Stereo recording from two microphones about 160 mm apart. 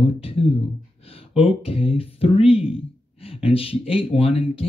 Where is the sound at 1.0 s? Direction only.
35° left (ahead or behind).